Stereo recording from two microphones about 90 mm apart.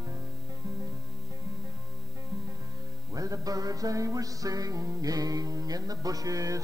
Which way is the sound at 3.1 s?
40° right (ahead or behind).